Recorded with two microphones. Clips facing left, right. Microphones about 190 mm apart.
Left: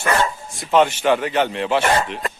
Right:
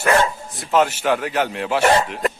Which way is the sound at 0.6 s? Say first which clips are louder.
Left 2 dB; centre (ahead or behind).